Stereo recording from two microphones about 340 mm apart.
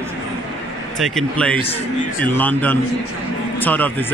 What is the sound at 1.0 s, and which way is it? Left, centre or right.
Speech, centre.